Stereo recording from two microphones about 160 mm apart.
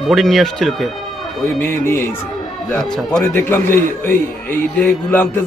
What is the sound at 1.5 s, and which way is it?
Speech, 15° left (ahead or behind).